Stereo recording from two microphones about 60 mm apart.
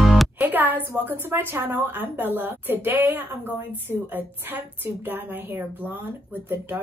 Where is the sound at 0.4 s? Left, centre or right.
Right.